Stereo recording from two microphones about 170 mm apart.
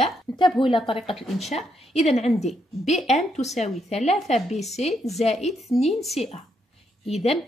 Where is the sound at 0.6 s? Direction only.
30° left (ahead or behind).